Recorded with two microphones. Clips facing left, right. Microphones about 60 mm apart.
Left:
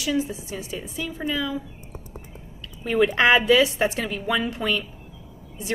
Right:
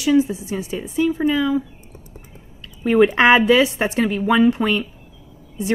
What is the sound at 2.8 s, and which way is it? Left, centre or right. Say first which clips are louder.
A woman's voice: right 5 dB; right.